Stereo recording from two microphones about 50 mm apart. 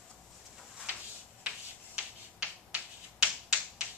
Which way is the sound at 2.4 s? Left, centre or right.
Right.